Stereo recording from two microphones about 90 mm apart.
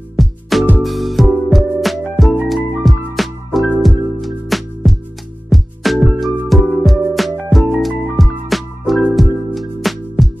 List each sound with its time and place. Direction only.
0.1 s music: centre (ahead or behind)